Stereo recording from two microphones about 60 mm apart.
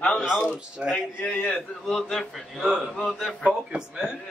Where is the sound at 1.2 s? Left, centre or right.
Centre.